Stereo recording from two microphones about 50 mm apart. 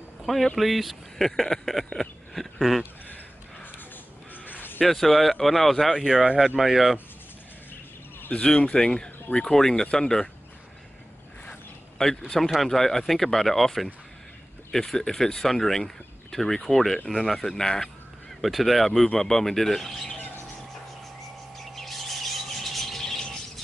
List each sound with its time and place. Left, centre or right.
0.2 s a sound: centre
0.6 s speech: centre
4.5 s a sound: left
4.8 s speech: centre
8.3 s speech: centre
12.0 s speech: centre
18.4 s speech: centre
21.5 s bird: centre